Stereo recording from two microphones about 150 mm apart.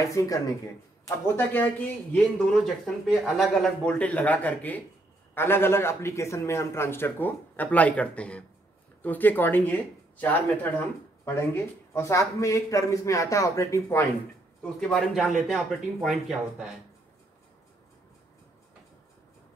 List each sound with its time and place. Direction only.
0.0 s a man's voice: 20° left (ahead or behind)
14.6 s speech: 5° left (ahead or behind)